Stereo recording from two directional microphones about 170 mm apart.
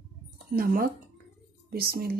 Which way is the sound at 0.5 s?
60° right (ahead or behind).